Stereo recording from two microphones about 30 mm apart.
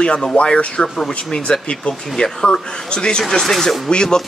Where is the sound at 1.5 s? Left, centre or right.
Left.